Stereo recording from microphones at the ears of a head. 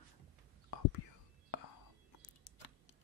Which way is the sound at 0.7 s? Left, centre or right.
Left.